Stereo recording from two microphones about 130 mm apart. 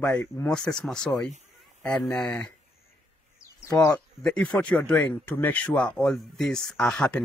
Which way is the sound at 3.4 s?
20° left (ahead or behind).